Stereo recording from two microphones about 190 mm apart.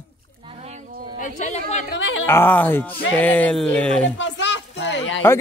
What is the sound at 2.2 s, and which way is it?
Speech, 10° left (ahead or behind).